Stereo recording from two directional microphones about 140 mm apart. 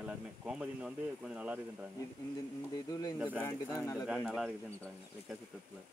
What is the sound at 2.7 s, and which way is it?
Speech, 25° left (ahead or behind).